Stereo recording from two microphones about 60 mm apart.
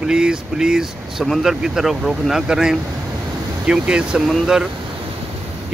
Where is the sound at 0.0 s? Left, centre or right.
Centre.